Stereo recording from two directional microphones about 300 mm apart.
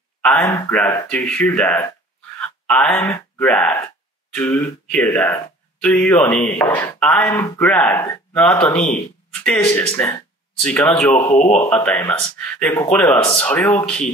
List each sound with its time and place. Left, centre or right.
0.2 s speech: centre
11.1 s speech: left
11.6 s speech: centre